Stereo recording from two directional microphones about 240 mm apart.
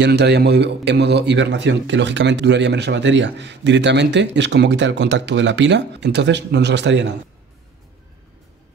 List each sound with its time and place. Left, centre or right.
0.0 s a man's voice: right